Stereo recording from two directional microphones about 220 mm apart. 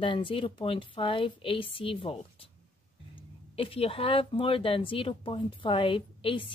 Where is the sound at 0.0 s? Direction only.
25° left (ahead or behind).